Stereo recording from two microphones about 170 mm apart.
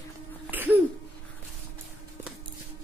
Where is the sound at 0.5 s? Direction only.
10° right (ahead or behind).